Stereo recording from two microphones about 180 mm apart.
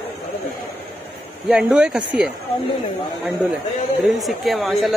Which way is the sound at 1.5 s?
5° right (ahead or behind).